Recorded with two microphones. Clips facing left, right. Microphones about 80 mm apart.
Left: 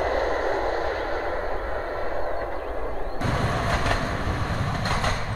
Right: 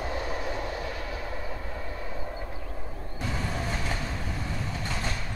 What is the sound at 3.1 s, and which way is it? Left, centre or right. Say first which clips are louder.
Vehicle: left 6 dB; left.